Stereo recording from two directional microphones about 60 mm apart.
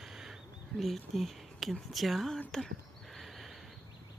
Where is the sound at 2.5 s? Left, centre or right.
Centre.